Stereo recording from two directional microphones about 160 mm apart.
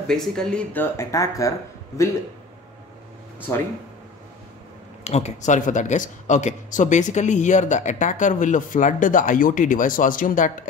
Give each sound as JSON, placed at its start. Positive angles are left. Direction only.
{"t": 0.1, "sound": "speech", "side_deg": 5}
{"t": 0.9, "sound": "speech", "side_deg": 20}
{"t": 5.0, "sound": "speech", "side_deg": 40}